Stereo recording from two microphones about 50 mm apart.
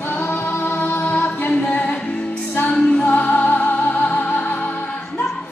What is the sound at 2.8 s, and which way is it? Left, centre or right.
Music, left.